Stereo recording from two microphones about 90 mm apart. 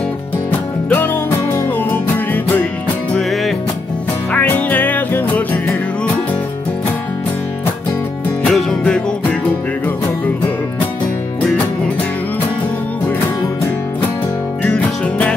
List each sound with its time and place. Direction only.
0.5 s music: 20° left (ahead or behind)
4.3 s music: 20° left (ahead or behind)
8.5 s music: 5° left (ahead or behind)
14.6 s music: 15° left (ahead or behind)